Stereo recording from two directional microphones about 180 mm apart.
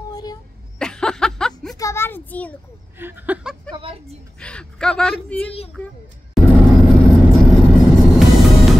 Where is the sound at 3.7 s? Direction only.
30° right (ahead or behind).